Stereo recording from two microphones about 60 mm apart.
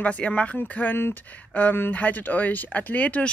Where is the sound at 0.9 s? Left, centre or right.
Left.